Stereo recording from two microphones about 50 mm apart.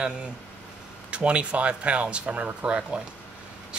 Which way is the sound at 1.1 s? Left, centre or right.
Right.